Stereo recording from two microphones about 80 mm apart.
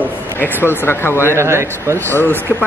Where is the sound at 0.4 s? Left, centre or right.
Left.